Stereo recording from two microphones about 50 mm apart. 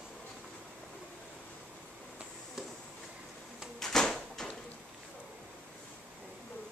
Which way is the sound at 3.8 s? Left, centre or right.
Centre.